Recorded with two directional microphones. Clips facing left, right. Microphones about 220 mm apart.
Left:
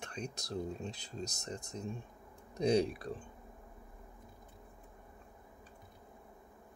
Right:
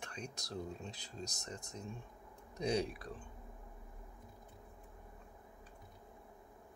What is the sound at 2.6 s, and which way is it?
Speech, 25° left (ahead or behind).